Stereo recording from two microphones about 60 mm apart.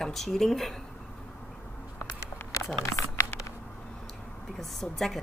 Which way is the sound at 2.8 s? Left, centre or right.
Left.